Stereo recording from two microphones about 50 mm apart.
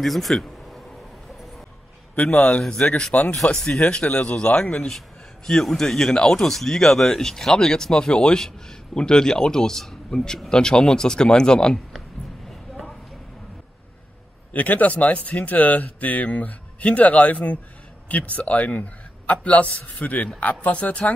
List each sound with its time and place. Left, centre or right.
0.0 s speech: centre
2.1 s speech: left
2.6 s speech: centre
3.1 s speech: left
3.5 s speech: centre
14.5 s a man's voice: left